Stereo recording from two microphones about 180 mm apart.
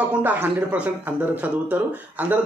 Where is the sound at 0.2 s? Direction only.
10° right (ahead or behind).